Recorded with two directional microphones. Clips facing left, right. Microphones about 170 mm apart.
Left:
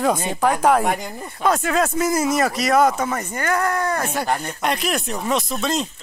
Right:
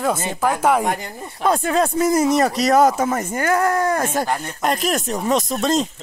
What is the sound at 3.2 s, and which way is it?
Speech, 45° right (ahead or behind).